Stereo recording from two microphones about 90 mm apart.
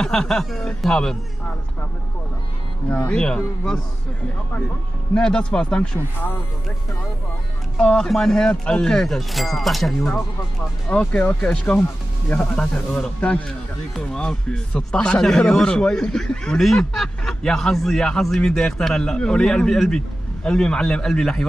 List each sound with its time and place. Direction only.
0.0 s a man's voice: 5° left (ahead or behind)
2.9 s a man's voice: 15° left (ahead or behind)
5.1 s a man's voice: 10° left (ahead or behind)
7.8 s speech: 10° left (ahead or behind)
10.9 s a man's voice: 20° left (ahead or behind)